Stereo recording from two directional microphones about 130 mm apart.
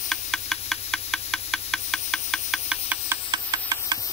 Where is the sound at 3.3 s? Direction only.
30° right (ahead or behind).